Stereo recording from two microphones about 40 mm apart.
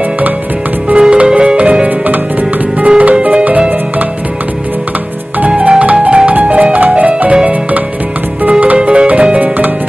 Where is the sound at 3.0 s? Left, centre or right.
Right.